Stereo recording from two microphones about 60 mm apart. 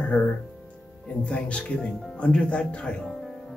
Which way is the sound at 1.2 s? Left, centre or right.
Centre.